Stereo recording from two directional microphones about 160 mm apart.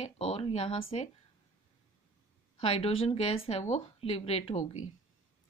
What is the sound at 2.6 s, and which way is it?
Speech, 40° left (ahead or behind).